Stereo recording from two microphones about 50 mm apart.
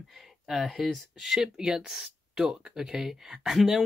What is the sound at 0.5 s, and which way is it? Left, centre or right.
Speech, centre.